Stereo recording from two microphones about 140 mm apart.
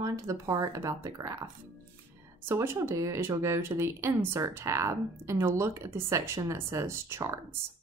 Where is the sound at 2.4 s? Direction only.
20° right (ahead or behind).